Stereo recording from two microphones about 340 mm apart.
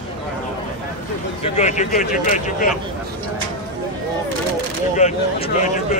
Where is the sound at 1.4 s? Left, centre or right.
Centre.